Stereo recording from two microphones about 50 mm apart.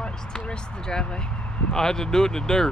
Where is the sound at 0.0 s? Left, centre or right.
Centre.